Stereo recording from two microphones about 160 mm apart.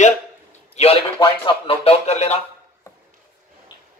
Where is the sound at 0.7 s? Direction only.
40° left (ahead or behind).